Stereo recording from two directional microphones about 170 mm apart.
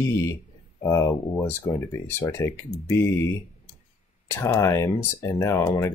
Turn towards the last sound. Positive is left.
turn(degrees=15)  # may be behind; listen again after turning